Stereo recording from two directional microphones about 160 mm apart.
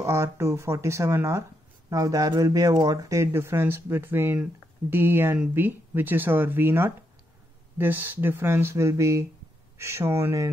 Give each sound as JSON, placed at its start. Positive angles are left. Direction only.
{"t": 0.0, "sound": "speech", "side_deg": -15}